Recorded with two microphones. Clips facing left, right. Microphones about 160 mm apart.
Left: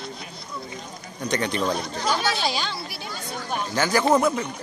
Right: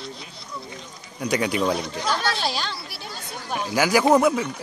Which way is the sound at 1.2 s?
10° right (ahead or behind).